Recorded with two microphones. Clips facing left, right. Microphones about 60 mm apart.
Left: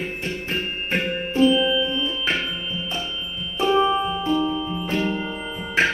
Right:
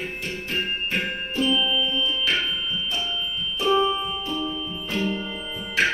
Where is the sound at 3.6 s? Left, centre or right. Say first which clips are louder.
Left 3 dB; left.